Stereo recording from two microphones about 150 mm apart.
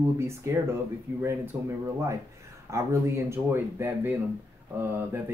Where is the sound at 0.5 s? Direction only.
15° right (ahead or behind).